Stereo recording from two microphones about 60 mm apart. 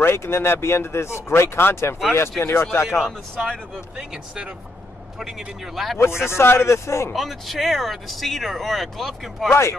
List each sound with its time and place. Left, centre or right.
0.0 s speech: left
3.4 s speech: centre
5.9 s speech: left
7.1 s speech: centre
9.5 s speech: left